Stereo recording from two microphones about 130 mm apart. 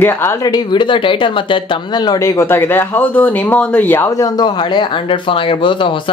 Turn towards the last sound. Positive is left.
turn(degrees=40)  # may be behind; listen again after turning